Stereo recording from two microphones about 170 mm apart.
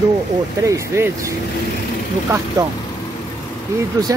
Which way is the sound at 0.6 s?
15° right (ahead or behind).